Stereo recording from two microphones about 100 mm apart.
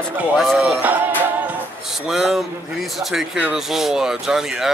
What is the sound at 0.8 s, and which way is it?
Music, 15° right (ahead or behind).